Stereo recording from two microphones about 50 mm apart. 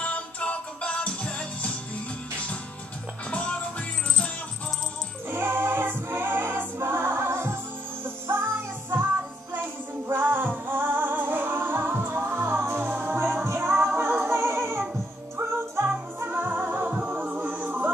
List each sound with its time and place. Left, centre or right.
0.0 s music: left
3.3 s music: left
5.3 s music: right
10.0 s music: right
16.3 s music: right